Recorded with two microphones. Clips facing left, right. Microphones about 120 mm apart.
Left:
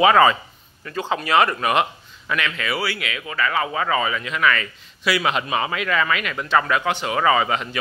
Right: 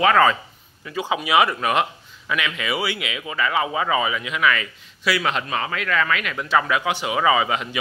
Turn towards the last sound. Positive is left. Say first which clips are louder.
# left 1 dB
turn(degrees=-5)  # may be behind; listen again after turning